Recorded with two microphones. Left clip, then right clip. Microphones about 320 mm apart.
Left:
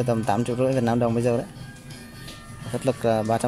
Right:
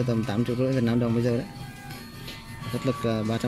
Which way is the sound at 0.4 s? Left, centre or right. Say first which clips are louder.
Left 3 dB; left.